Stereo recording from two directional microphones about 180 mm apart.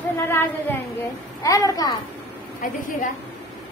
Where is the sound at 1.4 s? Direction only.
20° left (ahead or behind).